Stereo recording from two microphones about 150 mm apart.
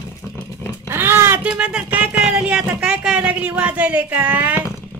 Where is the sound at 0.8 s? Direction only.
15° right (ahead or behind).